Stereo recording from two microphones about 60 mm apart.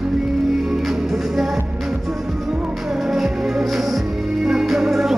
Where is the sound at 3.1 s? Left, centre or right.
Centre.